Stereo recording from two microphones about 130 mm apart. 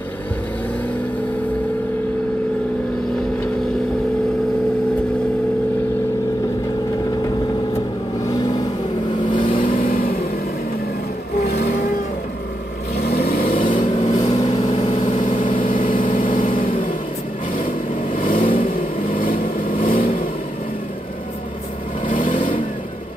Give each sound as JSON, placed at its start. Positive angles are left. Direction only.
{"t": 8.3, "sound": "vehicle", "side_deg": 30}
{"t": 9.2, "sound": "vehicle", "side_deg": 40}
{"t": 9.7, "sound": "vehicle", "side_deg": 90}
{"t": 13.4, "sound": "vehicle", "side_deg": 90}
{"t": 13.7, "sound": "vehicle", "side_deg": 40}
{"t": 14.2, "sound": "vehicle", "side_deg": 55}
{"t": 15.7, "sound": "vehicle", "side_deg": 90}
{"t": 22.0, "sound": "vehicle", "side_deg": 90}